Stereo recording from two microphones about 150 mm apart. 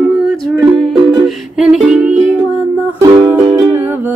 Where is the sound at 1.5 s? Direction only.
5° right (ahead or behind).